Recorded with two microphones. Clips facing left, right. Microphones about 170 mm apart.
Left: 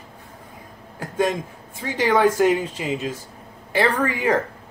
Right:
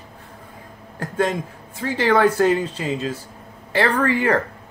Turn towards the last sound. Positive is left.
turn(degrees=15)  # may be behind; listen again after turning